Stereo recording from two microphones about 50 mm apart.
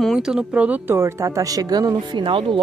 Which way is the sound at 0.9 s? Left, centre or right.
Right.